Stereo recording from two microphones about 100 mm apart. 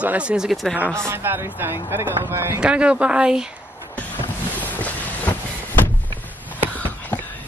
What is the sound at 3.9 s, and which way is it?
Boat, 15° left (ahead or behind).